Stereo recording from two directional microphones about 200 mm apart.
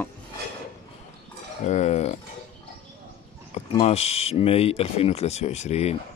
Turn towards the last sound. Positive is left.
turn(degrees=30)  # may be behind; listen again after turning